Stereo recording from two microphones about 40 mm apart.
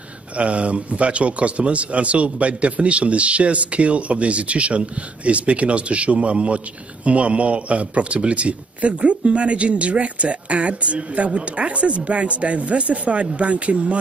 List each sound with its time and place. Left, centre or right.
0.4 s speech: right